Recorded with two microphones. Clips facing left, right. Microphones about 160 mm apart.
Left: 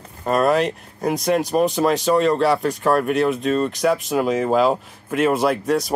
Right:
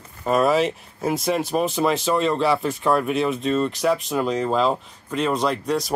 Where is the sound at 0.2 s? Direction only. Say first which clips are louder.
Left 1 dB; centre (ahead or behind).